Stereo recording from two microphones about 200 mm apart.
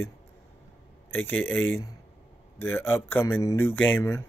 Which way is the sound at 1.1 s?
10° left (ahead or behind).